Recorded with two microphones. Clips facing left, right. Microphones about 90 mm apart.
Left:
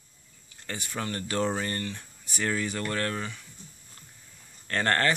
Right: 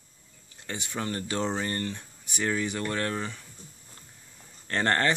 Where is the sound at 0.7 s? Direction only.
20° right (ahead or behind).